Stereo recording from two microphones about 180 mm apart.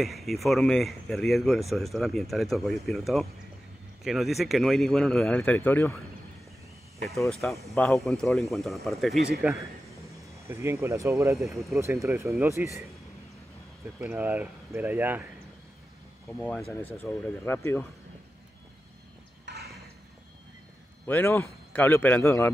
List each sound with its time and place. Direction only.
0.0 s speech: centre (ahead or behind)
7.2 s speech: centre (ahead or behind)
9.5 s speech: 10° right (ahead or behind)
13.9 s speech: 10° right (ahead or behind)
16.3 s a man's voice: 10° left (ahead or behind)
19.4 s horse: 60° right (ahead or behind)
21.1 s a man's voice: 10° left (ahead or behind)